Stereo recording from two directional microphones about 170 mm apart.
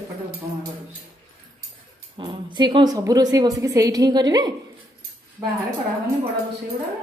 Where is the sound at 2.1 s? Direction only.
25° right (ahead or behind).